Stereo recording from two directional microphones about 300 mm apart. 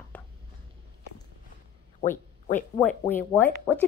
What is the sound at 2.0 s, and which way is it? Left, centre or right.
Speech, left.